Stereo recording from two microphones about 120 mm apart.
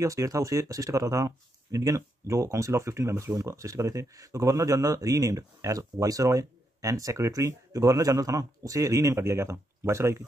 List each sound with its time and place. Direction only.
0.0 s speech: 25° right (ahead or behind)